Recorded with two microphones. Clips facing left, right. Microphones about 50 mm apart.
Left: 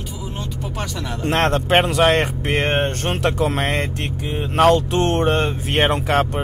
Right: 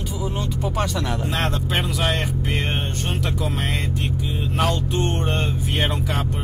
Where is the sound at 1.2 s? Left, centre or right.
Left.